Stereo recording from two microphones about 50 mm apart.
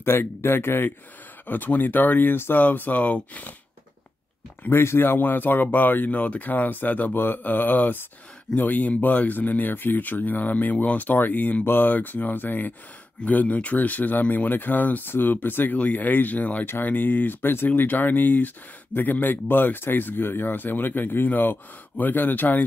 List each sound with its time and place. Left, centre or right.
0.0 s speech: left
1.5 s speech: left
4.6 s speech: left